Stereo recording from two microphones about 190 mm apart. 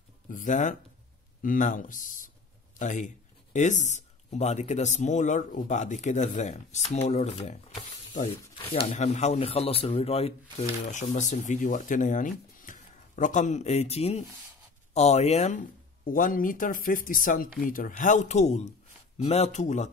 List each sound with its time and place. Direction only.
0.3 s speech: 45° left (ahead or behind)
8.5 s speech: 30° left (ahead or behind)